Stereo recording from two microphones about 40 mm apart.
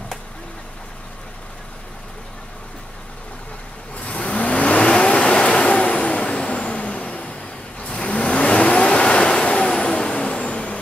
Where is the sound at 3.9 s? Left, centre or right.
Left.